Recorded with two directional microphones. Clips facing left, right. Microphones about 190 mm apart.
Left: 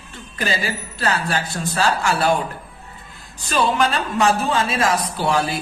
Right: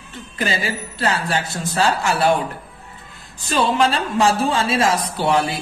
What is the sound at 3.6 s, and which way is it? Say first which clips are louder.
A woman's voice: right 1 dB; 25° right (ahead or behind).